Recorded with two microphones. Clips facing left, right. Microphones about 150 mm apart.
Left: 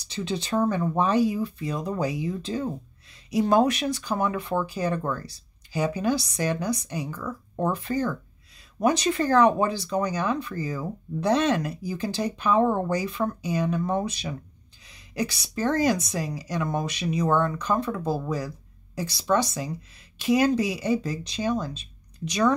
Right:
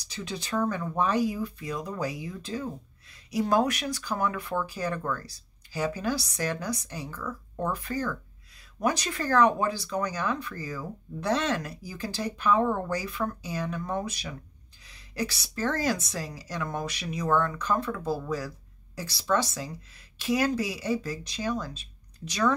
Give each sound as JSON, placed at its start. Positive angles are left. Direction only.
{"t": 0.0, "sound": "speech", "side_deg": 25}
{"t": 7.5, "sound": "speech", "side_deg": 25}